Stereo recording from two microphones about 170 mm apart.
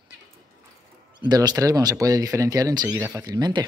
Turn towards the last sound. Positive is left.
turn(degrees=-25)  # may be behind; listen again after turning